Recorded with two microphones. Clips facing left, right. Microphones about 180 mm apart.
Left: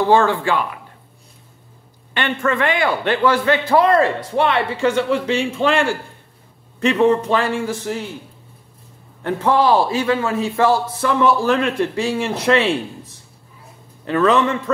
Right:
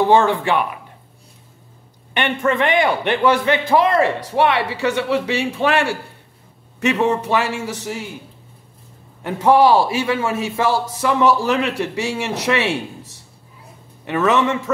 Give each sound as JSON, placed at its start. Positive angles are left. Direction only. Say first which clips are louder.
{"t": 0.1, "sound": "speech", "louder": "even", "side_deg": -20}
{"t": 2.1, "sound": "a man's voice", "louder": "right 1 dB", "side_deg": -20}
{"t": 7.2, "sound": "a man's voice", "louder": "left 1 dB", "side_deg": -10}
{"t": 9.2, "sound": "a man's voice", "louder": "right 3 dB", "side_deg": -10}
{"t": 14.0, "sound": "a man's voice", "louder": "left 1 dB", "side_deg": -20}